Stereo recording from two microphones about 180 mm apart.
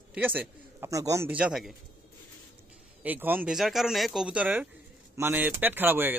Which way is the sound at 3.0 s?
10° right (ahead or behind).